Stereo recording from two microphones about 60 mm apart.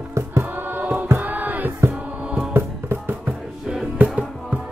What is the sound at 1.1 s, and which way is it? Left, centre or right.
Music, right.